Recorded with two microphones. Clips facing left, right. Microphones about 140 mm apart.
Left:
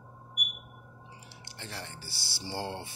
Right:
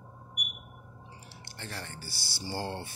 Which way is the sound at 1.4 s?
15° left (ahead or behind).